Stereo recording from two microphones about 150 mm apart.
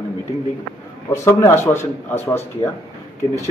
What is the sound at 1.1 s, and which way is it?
A man's voice, 20° left (ahead or behind).